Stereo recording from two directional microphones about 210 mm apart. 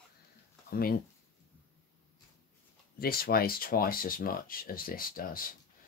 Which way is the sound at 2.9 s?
45° left (ahead or behind).